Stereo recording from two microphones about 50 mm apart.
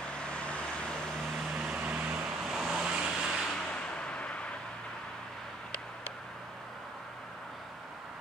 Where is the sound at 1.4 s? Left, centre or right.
Centre.